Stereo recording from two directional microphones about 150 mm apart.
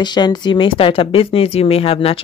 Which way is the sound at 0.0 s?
30° left (ahead or behind).